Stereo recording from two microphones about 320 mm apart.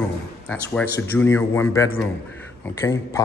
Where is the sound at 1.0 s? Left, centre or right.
Centre.